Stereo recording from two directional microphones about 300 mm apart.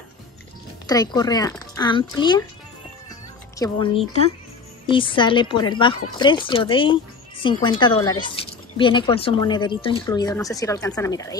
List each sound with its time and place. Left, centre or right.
0.8 s speech: centre
3.5 s speech: centre